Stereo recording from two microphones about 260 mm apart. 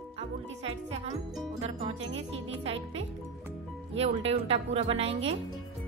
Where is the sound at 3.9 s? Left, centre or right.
Right.